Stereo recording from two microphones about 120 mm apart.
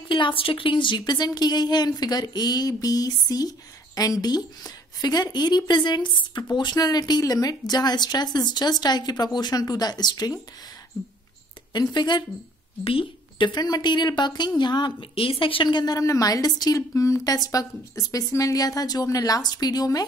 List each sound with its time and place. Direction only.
0.1 s a woman's voice: 45° left (ahead or behind)
11.7 s a woman's voice: 35° left (ahead or behind)